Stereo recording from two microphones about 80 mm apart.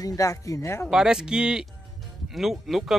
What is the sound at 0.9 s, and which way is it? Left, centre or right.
A man's voice, centre.